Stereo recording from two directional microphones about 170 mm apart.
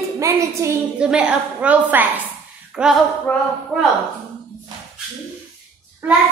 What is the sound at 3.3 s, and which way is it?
Speech, 10° left (ahead or behind).